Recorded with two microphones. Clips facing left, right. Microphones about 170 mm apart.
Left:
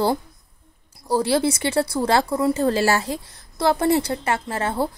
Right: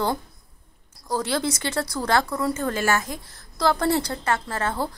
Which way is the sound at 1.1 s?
30° left (ahead or behind).